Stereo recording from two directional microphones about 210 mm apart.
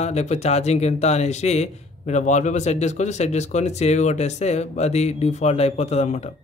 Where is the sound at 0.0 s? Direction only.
30° left (ahead or behind).